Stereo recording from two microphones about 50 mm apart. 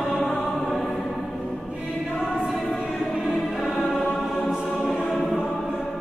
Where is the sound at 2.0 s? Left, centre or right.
Left.